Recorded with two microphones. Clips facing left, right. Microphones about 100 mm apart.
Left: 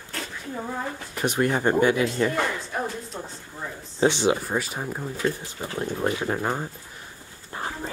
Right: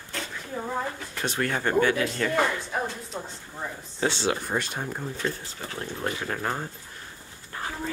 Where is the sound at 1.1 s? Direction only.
15° left (ahead or behind).